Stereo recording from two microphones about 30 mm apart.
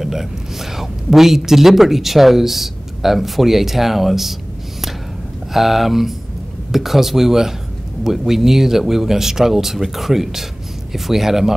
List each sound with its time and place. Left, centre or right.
0.0 s speech: centre
5.5 s speech: centre